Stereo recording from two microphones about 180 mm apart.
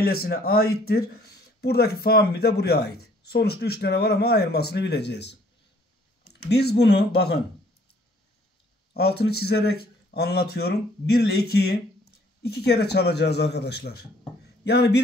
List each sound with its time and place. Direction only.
0.0 s speech: 60° left (ahead or behind)
6.5 s speech: 65° left (ahead or behind)
8.9 s speech: 65° left (ahead or behind)